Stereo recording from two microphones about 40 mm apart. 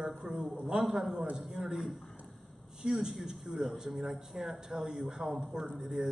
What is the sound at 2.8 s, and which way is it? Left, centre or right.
A man's voice, centre.